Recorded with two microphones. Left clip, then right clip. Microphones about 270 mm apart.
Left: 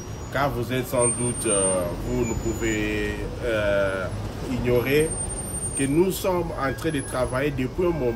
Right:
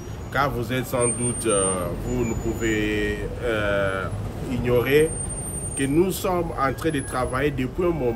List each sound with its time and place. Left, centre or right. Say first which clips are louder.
0.3 s a man's voice: right 1 dB; centre